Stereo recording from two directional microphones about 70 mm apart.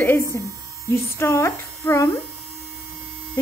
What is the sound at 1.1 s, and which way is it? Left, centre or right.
Speech, left.